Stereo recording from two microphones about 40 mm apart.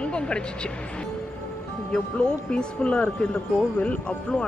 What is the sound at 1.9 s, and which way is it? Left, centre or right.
Speech, left.